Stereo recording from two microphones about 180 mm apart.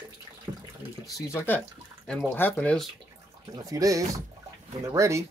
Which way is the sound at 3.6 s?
20° right (ahead or behind).